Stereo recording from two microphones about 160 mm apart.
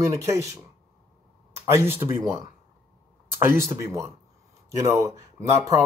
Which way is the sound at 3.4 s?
15° right (ahead or behind).